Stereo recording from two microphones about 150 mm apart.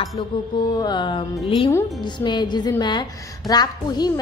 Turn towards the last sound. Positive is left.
turn(degrees=25)  # may be behind; listen again after turning